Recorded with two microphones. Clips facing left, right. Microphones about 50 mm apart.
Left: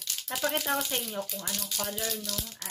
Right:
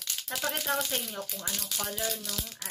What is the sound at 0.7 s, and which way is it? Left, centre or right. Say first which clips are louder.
Speech: left 1 dB; left.